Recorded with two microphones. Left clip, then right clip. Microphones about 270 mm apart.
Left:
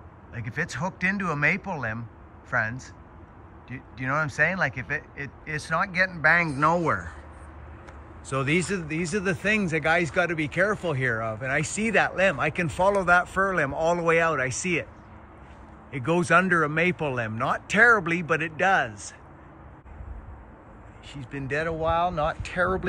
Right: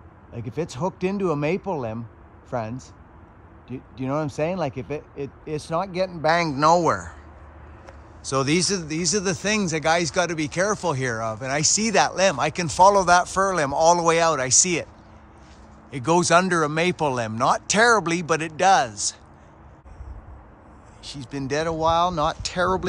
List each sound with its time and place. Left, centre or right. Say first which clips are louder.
0.3 s speech: right 1 dB; centre
3.6 s speech: even; centre
6.2 s speech: right 3 dB; centre
8.3 s speech: right 4 dB; centre
15.9 s speech: right 4 dB; centre
21.1 s speech: right 3 dB; centre